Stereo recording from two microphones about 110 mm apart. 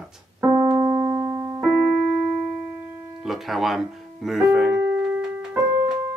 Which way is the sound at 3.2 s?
Centre (ahead or behind).